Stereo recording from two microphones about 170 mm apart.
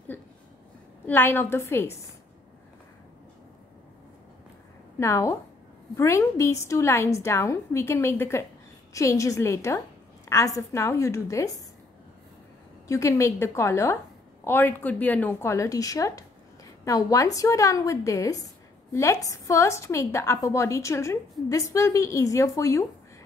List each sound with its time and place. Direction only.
0.1 s a sound: 15° left (ahead or behind)
1.0 s a woman's voice: 10° left (ahead or behind)
4.9 s a woman's voice: 15° left (ahead or behind)
12.8 s a woman's voice: 15° left (ahead or behind)